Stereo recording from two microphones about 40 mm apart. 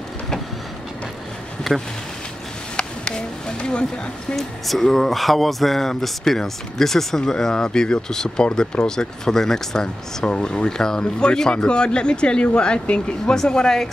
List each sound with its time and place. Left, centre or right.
1.7 s speech: centre
2.8 s a sound: left
4.4 s speech: centre